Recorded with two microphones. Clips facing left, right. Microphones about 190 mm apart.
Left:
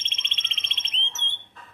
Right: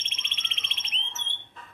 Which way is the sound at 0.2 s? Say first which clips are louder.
Left 1 dB; 25° left (ahead or behind).